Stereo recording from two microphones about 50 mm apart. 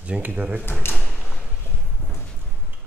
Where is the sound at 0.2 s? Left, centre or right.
Right.